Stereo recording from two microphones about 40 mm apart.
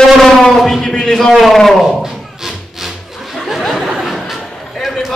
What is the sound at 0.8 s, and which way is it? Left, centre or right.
Speech, centre.